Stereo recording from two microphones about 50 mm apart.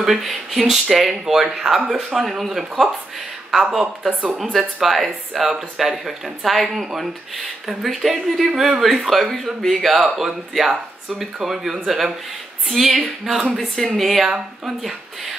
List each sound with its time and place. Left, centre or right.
0.0 s speech: centre
13.7 s speech: centre
14.3 s speech: centre